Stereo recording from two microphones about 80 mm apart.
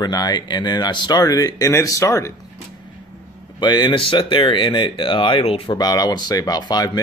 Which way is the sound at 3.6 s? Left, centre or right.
Left.